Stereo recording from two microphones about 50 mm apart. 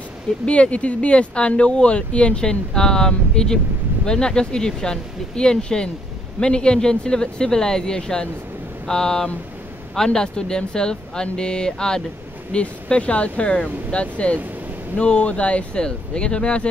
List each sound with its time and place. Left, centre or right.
0.5 s speech: left